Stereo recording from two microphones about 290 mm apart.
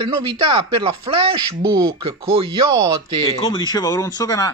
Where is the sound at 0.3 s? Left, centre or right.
Centre.